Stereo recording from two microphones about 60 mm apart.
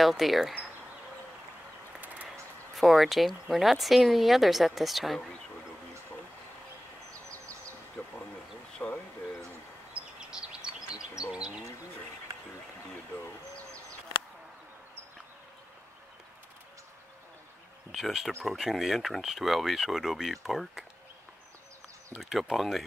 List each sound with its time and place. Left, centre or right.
0.0 s speech: centre
2.7 s speech: centre
8.0 s a sound: left
8.7 s a sound: centre
10.3 s bird: centre
17.9 s speech: centre
22.2 s speech: centre